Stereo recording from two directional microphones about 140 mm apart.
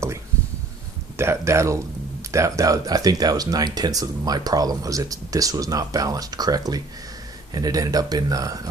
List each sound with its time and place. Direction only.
1.1 s speech: 20° right (ahead or behind)